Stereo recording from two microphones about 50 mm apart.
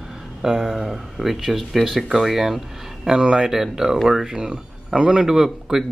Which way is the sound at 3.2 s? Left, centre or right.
Centre.